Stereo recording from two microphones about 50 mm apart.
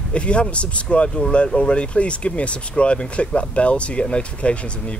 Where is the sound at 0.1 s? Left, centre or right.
Left.